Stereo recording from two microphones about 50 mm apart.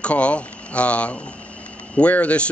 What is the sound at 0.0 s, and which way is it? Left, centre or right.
Speech, left.